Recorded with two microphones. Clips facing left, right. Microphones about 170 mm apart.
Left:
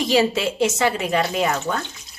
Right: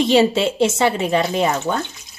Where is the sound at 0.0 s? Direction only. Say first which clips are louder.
Right 4 dB; 25° right (ahead or behind).